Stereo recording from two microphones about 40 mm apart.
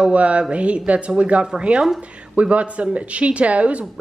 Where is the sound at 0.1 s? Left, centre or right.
Right.